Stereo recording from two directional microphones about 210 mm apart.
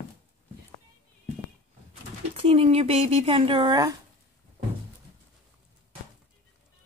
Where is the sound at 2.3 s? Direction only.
30° right (ahead or behind).